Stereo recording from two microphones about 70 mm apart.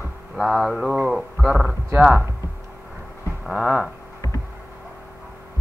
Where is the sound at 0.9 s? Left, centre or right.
Centre.